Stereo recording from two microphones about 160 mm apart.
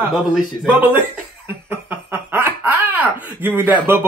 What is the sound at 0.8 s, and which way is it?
Speech, 10° right (ahead or behind).